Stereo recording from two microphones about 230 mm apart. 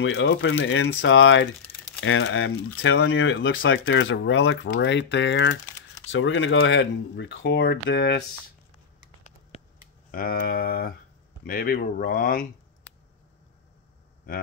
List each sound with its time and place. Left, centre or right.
0.0 s speech: left
9.5 s a sound: left
10.1 s speech: left